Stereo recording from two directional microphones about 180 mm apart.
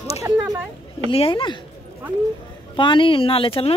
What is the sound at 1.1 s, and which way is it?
Speech, 30° left (ahead or behind).